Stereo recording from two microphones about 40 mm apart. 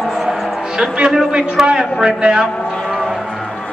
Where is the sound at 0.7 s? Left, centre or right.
Right.